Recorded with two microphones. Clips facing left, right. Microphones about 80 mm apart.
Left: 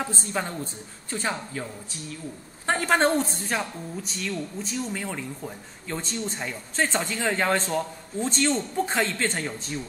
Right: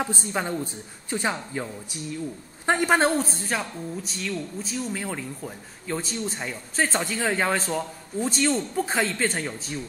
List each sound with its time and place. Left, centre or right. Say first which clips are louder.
0.0 s a woman's voice: right 2 dB; centre